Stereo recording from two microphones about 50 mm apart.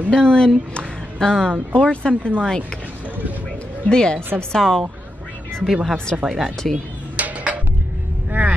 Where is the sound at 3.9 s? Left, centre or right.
Centre.